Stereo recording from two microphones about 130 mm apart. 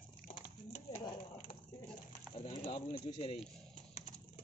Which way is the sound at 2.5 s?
55° left (ahead or behind).